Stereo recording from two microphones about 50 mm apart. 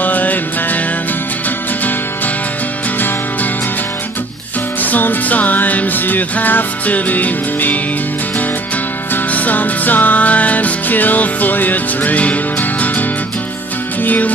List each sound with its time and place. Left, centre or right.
0.0 s music: left
4.8 s music: left
9.1 s music: left
14.0 s music: left